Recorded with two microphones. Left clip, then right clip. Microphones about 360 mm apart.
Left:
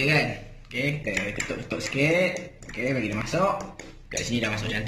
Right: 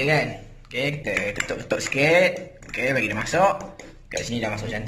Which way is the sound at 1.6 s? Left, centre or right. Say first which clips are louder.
Right 5 dB; right.